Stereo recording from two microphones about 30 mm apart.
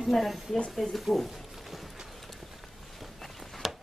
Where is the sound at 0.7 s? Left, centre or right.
Centre.